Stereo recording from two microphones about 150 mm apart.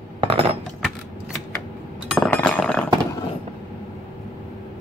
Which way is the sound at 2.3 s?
10° left (ahead or behind).